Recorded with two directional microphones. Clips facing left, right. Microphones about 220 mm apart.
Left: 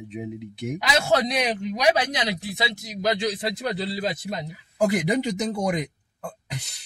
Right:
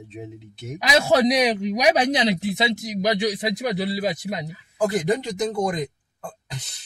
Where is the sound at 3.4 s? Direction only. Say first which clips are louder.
Right 3 dB; 15° right (ahead or behind).